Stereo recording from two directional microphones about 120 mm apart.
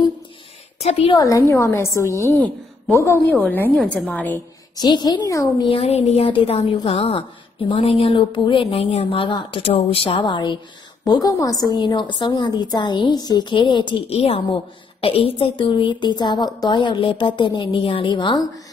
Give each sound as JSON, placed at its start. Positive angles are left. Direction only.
{"t": 0.7, "sound": "a woman's voice", "side_deg": 60}
{"t": 1.1, "sound": "a woman's voice", "side_deg": 30}
{"t": 3.7, "sound": "a woman's voice", "side_deg": 0}
{"t": 4.7, "sound": "a woman's voice", "side_deg": 35}
{"t": 5.6, "sound": "a woman's voice", "side_deg": 50}
{"t": 8.6, "sound": "a woman's voice", "side_deg": 55}
{"t": 14.0, "sound": "a woman's voice", "side_deg": 55}